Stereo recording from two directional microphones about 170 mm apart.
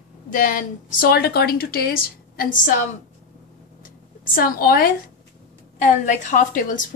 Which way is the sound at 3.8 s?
55° left (ahead or behind).